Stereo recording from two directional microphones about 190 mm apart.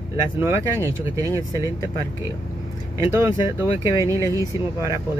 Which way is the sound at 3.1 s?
15° right (ahead or behind).